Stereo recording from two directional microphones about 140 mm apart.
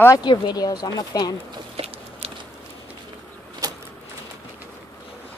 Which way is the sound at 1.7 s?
45° right (ahead or behind).